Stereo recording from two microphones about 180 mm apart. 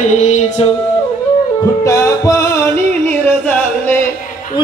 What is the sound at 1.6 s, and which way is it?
Music, 15° left (ahead or behind).